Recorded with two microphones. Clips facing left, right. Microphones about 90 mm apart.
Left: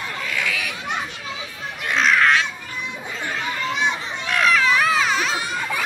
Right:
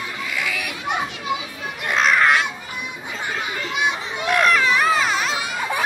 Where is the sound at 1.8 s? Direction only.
5° right (ahead or behind).